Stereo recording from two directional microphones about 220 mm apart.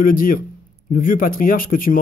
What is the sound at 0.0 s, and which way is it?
A man's voice, 40° left (ahead or behind).